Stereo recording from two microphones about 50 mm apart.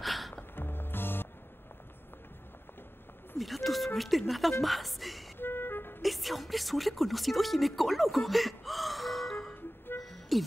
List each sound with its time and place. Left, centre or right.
0.0 s music: centre
0.6 s music: left
3.3 s a woman's voice: centre
5.4 s music: left
6.0 s speech: centre
10.0 s music: centre